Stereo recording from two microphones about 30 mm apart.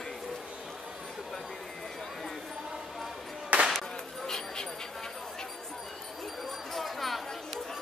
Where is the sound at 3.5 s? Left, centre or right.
Right.